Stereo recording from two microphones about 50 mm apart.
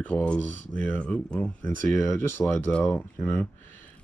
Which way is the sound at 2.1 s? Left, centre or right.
Left.